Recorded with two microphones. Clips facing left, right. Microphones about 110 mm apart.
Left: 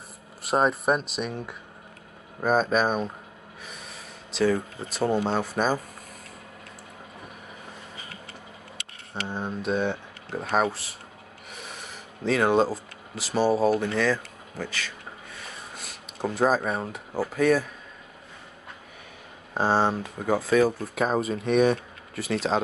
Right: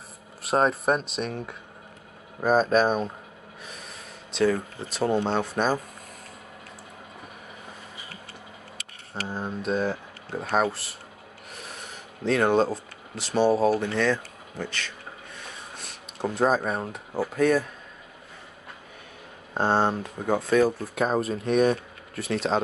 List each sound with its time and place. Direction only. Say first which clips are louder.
0.4 s speech: even; centre (ahead or behind)
9.1 s speech: even; centre (ahead or behind)
11.5 s a sound: even; centre (ahead or behind)
19.5 s speech: even; centre (ahead or behind)